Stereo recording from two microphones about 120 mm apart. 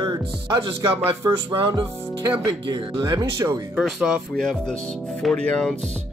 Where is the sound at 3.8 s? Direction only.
Centre (ahead or behind).